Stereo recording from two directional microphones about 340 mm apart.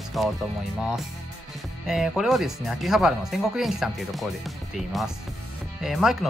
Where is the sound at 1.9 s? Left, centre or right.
Centre.